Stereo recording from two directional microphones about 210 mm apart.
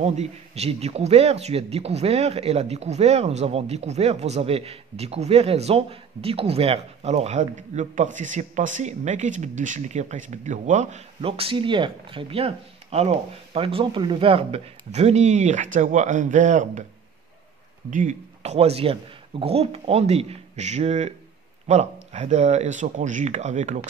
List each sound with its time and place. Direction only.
0.0 s speech: 30° right (ahead or behind)
17.8 s speech: 35° right (ahead or behind)